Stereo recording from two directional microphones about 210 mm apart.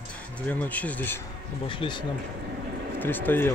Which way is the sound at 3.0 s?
10° left (ahead or behind).